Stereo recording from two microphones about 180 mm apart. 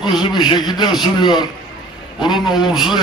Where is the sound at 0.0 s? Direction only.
25° left (ahead or behind).